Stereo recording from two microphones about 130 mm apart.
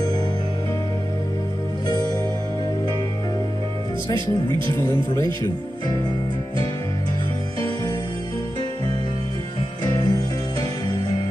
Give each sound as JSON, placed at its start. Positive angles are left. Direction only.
{"t": 1.9, "sound": "music", "side_deg": 35}
{"t": 4.1, "sound": "speech", "side_deg": -35}
{"t": 4.8, "sound": "speech", "side_deg": 30}
{"t": 9.8, "sound": "music", "side_deg": 30}